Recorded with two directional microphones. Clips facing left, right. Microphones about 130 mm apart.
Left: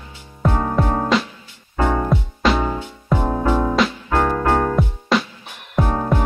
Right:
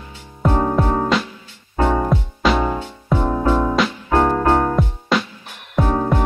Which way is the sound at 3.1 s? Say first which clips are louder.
Right 1 dB; 15° left (ahead or behind).